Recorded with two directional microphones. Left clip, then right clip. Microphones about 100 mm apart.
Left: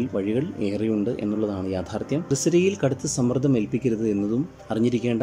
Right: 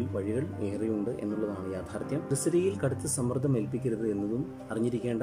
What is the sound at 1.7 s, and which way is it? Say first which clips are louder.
Speech: left 7 dB; 20° left (ahead or behind).